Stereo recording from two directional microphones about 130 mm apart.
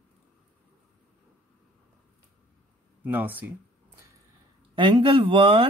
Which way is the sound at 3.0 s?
15° right (ahead or behind).